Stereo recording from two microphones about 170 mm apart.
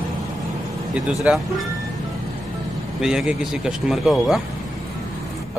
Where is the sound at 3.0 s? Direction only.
5° right (ahead or behind).